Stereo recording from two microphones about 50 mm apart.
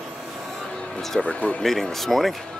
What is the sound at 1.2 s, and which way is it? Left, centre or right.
Speech, left.